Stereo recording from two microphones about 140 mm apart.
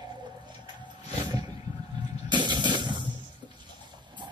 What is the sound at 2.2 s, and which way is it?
Music, 30° right (ahead or behind).